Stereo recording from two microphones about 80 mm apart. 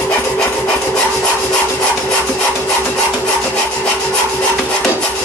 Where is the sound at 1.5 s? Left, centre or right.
Centre.